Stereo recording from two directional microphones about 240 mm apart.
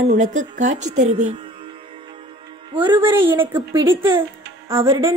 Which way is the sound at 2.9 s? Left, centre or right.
Centre.